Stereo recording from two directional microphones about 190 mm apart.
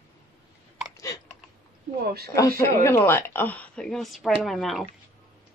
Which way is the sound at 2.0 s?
55° right (ahead or behind).